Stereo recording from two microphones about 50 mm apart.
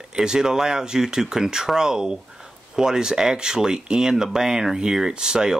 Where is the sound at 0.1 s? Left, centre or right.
Centre.